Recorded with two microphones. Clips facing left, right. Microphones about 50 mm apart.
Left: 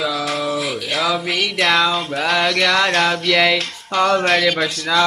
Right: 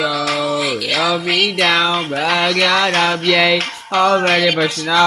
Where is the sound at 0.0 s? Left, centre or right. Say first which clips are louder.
Right 3 dB; right.